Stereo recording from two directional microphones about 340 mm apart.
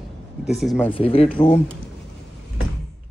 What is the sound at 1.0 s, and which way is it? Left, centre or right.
Speech, centre.